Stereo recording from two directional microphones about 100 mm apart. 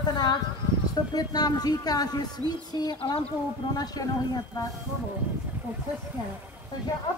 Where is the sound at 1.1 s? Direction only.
40° left (ahead or behind).